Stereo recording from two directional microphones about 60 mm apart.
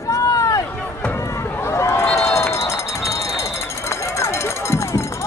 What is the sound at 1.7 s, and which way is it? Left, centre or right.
Run, left.